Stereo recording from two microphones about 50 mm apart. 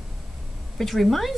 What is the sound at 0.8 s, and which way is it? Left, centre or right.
Speech, centre.